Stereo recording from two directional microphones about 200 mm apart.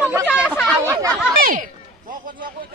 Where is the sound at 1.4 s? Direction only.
45° right (ahead or behind).